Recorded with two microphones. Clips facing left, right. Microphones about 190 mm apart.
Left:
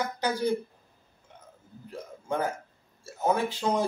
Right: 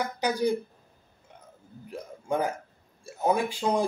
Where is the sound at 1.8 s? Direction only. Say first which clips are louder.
Right 2 dB; 15° right (ahead or behind).